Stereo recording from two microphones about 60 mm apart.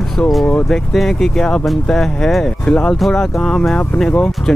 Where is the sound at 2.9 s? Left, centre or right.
Centre.